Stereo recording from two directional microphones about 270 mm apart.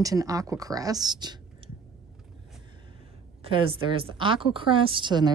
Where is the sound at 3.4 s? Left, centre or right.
Centre.